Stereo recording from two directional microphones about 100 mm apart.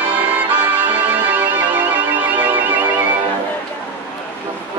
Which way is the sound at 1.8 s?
15° right (ahead or behind).